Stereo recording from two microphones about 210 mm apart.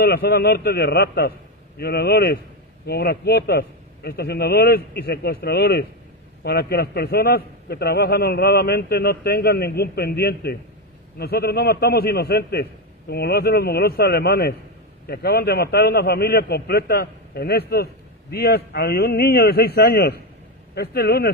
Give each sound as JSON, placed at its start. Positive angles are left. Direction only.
{"t": 0.0, "sound": "a man's voice", "side_deg": 50}